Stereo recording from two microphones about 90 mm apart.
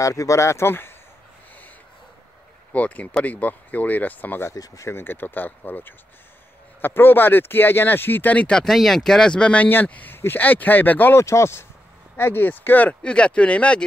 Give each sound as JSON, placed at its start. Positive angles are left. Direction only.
{"t": 0.0, "sound": "speech", "side_deg": 40}
{"t": 2.7, "sound": "speech", "side_deg": 15}
{"t": 4.6, "sound": "speech", "side_deg": 40}
{"t": 4.9, "sound": "speech", "side_deg": 20}